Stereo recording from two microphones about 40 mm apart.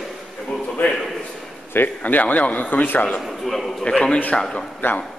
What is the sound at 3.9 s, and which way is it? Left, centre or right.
Speech, left.